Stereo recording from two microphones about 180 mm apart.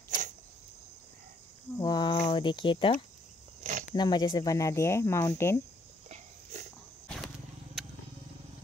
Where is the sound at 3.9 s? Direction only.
25° left (ahead or behind).